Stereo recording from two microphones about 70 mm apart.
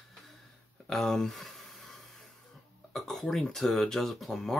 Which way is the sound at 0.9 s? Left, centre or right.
Centre.